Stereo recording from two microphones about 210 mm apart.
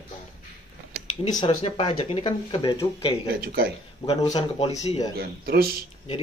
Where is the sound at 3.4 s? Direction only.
50° right (ahead or behind).